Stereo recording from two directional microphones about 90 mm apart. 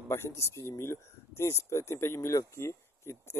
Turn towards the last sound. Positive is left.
turn(degrees=30)  # may be behind; listen again after turning